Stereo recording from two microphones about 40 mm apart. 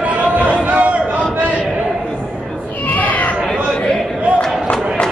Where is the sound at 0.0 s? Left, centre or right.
Right.